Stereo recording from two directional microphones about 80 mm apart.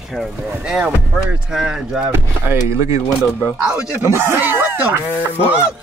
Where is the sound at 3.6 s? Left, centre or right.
Centre.